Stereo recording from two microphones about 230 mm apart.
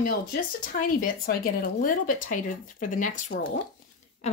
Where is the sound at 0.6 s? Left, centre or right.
Left.